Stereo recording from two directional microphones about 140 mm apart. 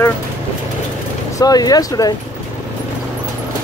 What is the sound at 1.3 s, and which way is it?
Speech, 25° left (ahead or behind).